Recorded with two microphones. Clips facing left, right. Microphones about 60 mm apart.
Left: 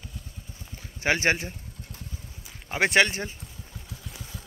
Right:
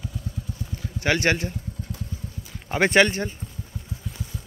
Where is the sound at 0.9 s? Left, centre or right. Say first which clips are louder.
Right 2 dB; centre.